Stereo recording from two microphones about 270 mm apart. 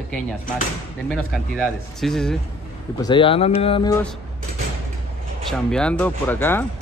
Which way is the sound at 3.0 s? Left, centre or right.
Centre.